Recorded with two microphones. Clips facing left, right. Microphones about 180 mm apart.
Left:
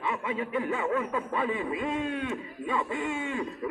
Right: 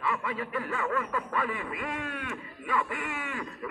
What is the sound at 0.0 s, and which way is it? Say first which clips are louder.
Speech: left 1 dB; 20° left (ahead or behind).